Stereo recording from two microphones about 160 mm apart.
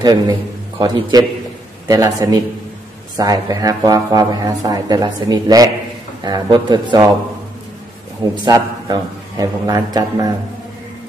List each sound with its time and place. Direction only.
0.0 s a man's voice: 25° right (ahead or behind)
8.2 s speech: 25° right (ahead or behind)